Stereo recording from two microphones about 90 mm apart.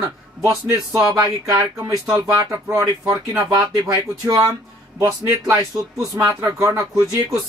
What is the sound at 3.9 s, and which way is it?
Speech, 40° right (ahead or behind).